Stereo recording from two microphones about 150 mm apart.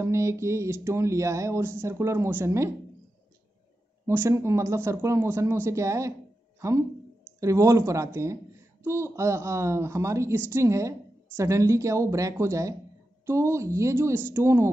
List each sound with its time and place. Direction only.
0.0 s a woman's voice: 20° right (ahead or behind)
4.0 s a woman's voice: 20° right (ahead or behind)